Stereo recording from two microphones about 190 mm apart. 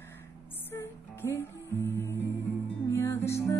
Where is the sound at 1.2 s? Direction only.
15° left (ahead or behind).